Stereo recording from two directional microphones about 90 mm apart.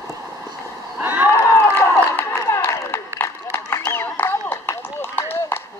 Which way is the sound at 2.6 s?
25° left (ahead or behind).